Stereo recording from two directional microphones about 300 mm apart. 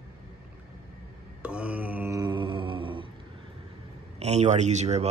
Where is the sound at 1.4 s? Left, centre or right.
Centre.